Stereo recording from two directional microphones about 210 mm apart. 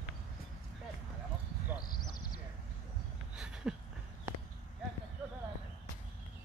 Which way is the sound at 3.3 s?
5° right (ahead or behind).